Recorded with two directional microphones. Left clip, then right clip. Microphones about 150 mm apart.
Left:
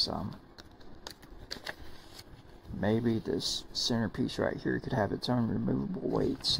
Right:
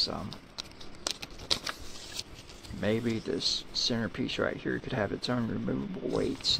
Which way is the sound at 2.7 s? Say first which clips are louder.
Even; 25° left (ahead or behind).